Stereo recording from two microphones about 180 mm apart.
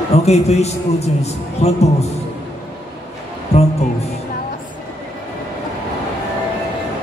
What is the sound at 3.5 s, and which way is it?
Music, 35° left (ahead or behind).